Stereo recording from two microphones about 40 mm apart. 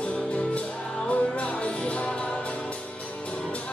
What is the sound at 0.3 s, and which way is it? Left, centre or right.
Music, left.